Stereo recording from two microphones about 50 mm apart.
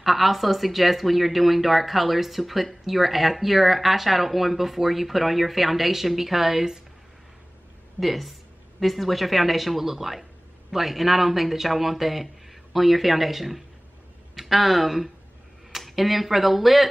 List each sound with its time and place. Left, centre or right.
0.0 s speech: centre
8.0 s speech: centre